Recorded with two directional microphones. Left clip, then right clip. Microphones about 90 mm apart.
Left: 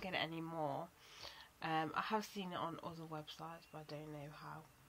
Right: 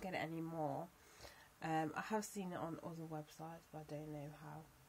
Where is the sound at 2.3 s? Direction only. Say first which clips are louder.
Left 2 dB; 20° right (ahead or behind).